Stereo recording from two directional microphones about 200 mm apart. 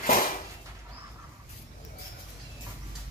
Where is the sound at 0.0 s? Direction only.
45° left (ahead or behind).